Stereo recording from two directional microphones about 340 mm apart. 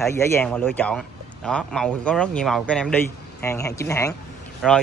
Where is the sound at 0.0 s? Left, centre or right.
Centre.